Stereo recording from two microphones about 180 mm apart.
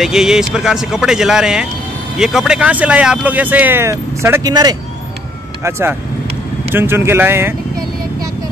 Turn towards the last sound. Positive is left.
turn(degrees=-10)  # may be behind; listen again after turning